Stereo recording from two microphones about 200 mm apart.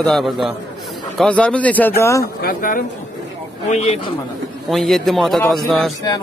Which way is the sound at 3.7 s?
30° left (ahead or behind).